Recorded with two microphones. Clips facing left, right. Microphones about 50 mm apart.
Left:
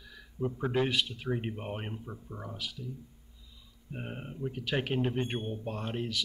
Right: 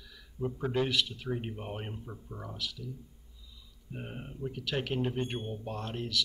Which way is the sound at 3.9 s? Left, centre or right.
Centre.